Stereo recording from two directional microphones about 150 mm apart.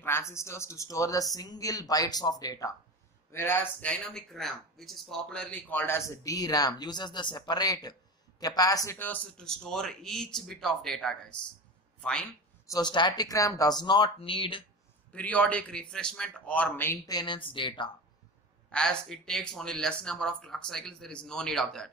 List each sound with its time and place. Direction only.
0.0 s a man's voice: 15° left (ahead or behind)
12.6 s speech: 25° left (ahead or behind)
15.1 s speech: 10° left (ahead or behind); by 17.9 s 30° left (ahead or behind)
18.7 s speech: 5° left (ahead or behind)